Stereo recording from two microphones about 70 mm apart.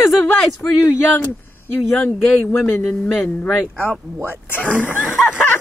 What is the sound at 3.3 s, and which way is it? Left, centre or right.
Speech, centre.